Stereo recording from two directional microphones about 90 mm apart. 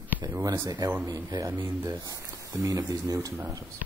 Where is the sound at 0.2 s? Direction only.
40° right (ahead or behind).